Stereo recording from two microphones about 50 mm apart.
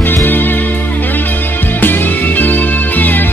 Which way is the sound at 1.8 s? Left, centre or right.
Left.